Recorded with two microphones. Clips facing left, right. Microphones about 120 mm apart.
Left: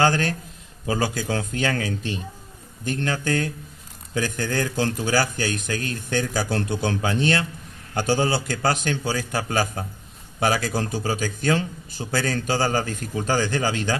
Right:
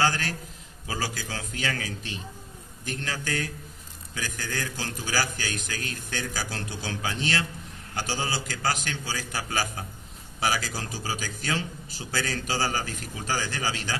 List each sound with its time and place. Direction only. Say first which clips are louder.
0.0 s a man's voice: left 6 dB; 55° left (ahead or behind)
3.0 s a man's voice: left 7 dB; 55° left (ahead or behind)